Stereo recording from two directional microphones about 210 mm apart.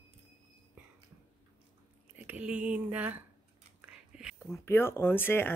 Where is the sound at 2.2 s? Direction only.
5° right (ahead or behind).